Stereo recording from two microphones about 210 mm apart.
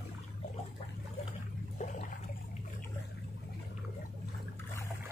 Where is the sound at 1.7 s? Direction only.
35° left (ahead or behind).